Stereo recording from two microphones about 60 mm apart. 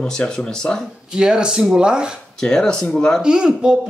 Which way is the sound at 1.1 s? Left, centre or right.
Centre.